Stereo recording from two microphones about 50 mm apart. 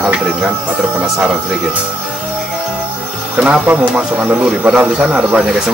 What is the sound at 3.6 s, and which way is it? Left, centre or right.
Speech, right.